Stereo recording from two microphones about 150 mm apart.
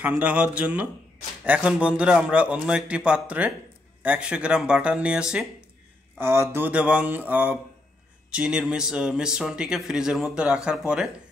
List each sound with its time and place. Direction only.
0.0 s a man's voice: 10° right (ahead or behind)
6.1 s a man's voice: 15° right (ahead or behind)